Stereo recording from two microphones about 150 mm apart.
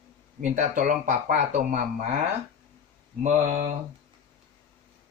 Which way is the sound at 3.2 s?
55° right (ahead or behind).